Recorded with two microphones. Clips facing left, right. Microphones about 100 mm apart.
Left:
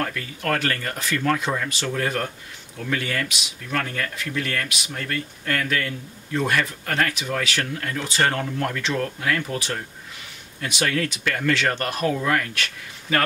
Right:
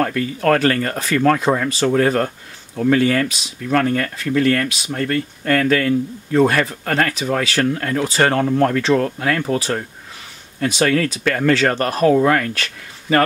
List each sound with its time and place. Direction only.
0.0 s speech: 55° right (ahead or behind)
0.6 s speech: 40° right (ahead or behind)
1.1 s speech: 55° right (ahead or behind)
1.7 s speech: 35° right (ahead or behind)
4.4 s speech: 35° right (ahead or behind)